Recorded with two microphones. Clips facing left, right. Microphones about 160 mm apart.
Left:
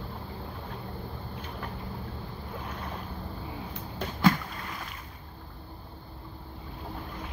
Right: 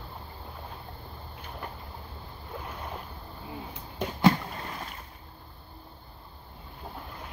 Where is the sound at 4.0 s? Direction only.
25° right (ahead or behind).